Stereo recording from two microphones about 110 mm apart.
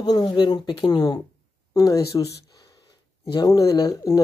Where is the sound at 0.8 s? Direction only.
35° left (ahead or behind).